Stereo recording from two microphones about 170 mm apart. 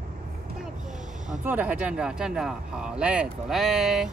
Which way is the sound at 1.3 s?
10° right (ahead or behind).